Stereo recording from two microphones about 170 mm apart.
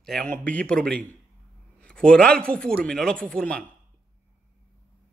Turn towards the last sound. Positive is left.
turn(degrees=5)  # may be behind; listen again after turning